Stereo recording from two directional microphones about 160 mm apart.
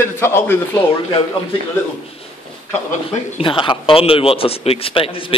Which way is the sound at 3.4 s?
30° left (ahead or behind).